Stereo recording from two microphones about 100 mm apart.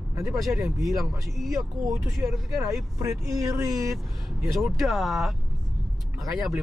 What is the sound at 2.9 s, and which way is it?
Speech, 30° right (ahead or behind).